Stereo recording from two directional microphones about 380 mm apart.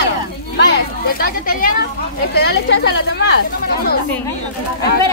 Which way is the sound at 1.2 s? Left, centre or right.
Left.